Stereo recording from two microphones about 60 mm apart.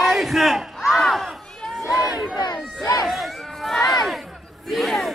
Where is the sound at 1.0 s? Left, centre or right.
Centre.